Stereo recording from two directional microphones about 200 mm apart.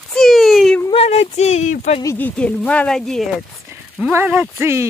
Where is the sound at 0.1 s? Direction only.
Centre (ahead or behind).